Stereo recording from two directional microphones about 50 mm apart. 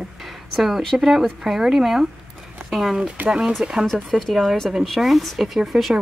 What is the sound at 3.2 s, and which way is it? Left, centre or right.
Speech, centre.